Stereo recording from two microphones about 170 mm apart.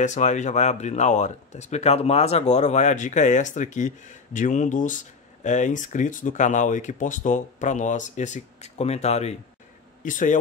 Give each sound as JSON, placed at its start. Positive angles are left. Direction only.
{"t": 0.0, "sound": "speech", "side_deg": 45}